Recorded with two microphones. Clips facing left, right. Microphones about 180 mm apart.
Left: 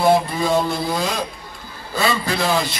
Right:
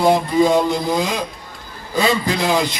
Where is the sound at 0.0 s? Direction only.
15° right (ahead or behind).